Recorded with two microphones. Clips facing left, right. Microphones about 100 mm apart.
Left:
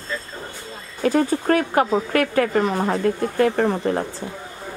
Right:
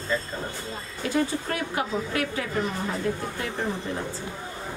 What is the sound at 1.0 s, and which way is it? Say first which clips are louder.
A woman's voice: left 7 dB; 50° left (ahead or behind).